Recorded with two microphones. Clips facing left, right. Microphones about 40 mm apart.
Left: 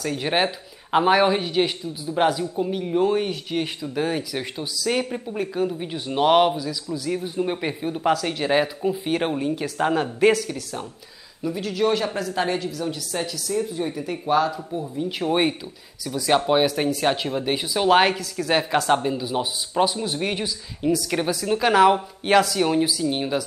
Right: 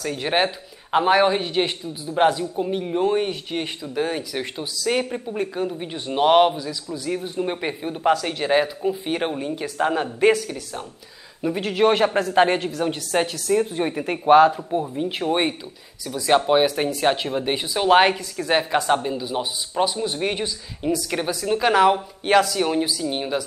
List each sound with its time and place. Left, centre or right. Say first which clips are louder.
0.0 s a man's voice: right 1 dB; centre
11.4 s speech: right 4 dB; right
15.2 s speech: left 2 dB; centre